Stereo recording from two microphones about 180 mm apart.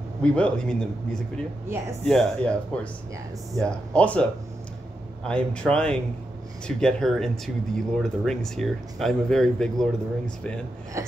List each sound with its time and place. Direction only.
0.2 s speech: 5° left (ahead or behind)
2.0 s speech: 5° left (ahead or behind)
11.0 s a sound: 15° right (ahead or behind)